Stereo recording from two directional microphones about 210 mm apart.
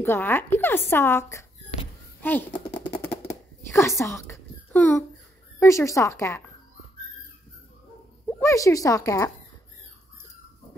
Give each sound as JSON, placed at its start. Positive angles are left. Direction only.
{"t": 0.0, "sound": "a woman's voice", "side_deg": 10}
{"t": 2.5, "sound": "a sound", "side_deg": 25}
{"t": 3.6, "sound": "a child's voice", "side_deg": 10}
{"t": 8.3, "sound": "speech", "side_deg": 15}